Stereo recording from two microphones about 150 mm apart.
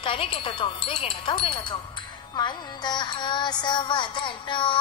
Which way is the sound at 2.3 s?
30° left (ahead or behind).